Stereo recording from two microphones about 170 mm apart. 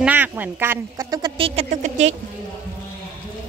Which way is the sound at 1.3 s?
35° right (ahead or behind).